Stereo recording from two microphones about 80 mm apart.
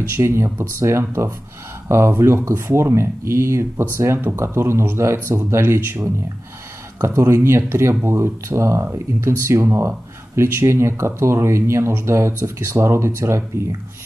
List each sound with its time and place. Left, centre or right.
0.2 s speech: right